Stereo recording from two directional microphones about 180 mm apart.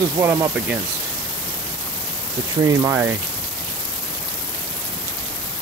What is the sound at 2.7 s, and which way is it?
Speech, 15° right (ahead or behind).